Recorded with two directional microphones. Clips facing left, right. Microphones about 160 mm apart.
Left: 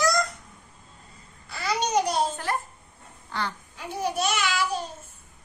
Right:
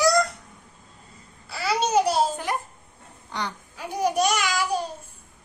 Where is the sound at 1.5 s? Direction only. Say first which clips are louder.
Right 3 dB; 5° right (ahead or behind).